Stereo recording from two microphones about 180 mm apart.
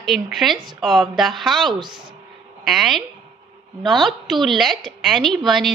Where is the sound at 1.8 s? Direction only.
25° right (ahead or behind).